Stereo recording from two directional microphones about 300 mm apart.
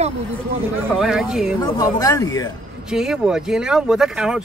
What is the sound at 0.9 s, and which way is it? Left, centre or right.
Speech, centre.